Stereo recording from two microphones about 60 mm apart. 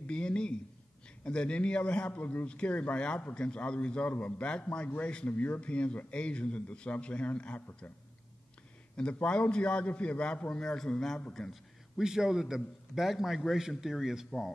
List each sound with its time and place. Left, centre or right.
0.0 s a man's voice: centre
8.9 s a man's voice: centre
12.0 s a man's voice: centre